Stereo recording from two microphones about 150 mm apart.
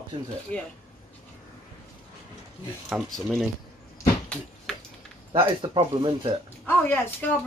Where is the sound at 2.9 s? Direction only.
Centre (ahead or behind).